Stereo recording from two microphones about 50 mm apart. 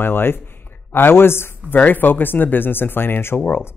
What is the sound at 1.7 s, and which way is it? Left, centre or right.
Speech, left.